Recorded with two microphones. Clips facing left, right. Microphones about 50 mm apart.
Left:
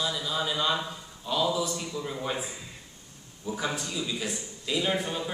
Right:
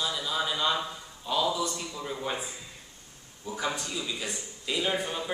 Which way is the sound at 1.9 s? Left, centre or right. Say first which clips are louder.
Left 2 dB; centre.